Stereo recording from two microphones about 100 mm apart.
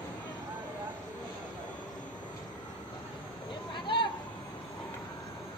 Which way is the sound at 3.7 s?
55° left (ahead or behind).